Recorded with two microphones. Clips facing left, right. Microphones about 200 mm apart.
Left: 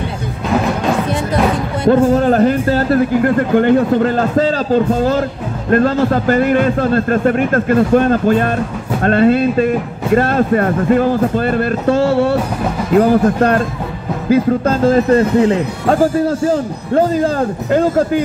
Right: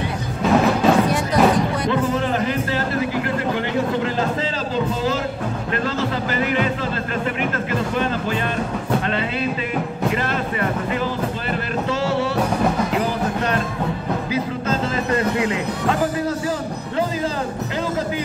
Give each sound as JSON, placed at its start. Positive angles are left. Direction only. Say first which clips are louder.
{"t": 1.9, "sound": "speech", "louder": "left 10 dB", "side_deg": 45}
{"t": 5.7, "sound": "speech", "louder": "left 12 dB", "side_deg": 50}
{"t": 16.9, "sound": "speech", "louder": "left 10 dB", "side_deg": 50}